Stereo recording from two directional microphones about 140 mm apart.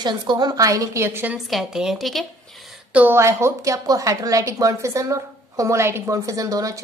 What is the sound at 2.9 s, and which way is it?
A woman's voice, 15° right (ahead or behind).